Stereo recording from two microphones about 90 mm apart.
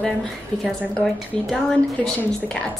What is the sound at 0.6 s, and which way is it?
A woman's voice, centre (ahead or behind).